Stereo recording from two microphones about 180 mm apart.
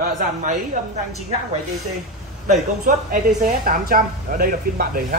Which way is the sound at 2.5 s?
50° right (ahead or behind).